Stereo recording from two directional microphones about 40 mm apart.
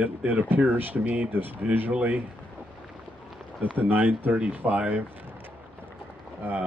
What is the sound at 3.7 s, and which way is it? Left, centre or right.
Speech, right.